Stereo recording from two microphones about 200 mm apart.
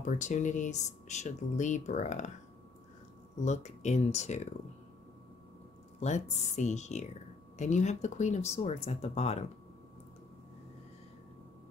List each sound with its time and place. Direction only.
0.0 s speech: 40° left (ahead or behind)
3.3 s speech: 35° left (ahead or behind)
5.9 s speech: 35° left (ahead or behind)